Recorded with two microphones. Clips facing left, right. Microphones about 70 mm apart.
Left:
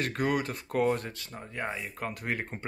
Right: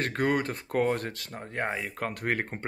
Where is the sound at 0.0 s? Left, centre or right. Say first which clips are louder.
Right 2 dB; right.